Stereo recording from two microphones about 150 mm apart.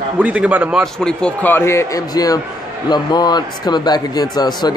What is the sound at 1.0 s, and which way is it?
Speech, 10° left (ahead or behind).